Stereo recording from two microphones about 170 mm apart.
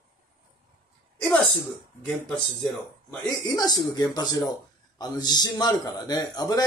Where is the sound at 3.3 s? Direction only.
25° left (ahead or behind).